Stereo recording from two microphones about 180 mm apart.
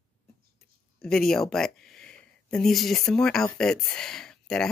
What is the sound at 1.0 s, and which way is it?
Speech, centre (ahead or behind).